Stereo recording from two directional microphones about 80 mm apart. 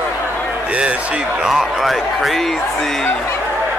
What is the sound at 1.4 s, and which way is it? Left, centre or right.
A man's voice, centre.